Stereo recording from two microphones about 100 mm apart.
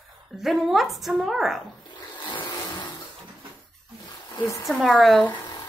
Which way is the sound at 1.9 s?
55° left (ahead or behind).